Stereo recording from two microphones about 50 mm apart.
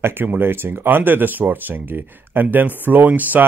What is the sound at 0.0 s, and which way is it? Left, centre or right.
Speech, right.